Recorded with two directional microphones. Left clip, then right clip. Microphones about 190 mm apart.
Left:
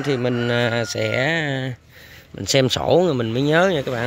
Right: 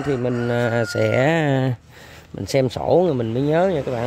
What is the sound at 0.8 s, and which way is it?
Speech, 20° right (ahead or behind).